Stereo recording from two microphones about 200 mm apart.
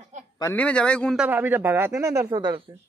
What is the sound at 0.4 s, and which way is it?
A man's voice, 10° left (ahead or behind).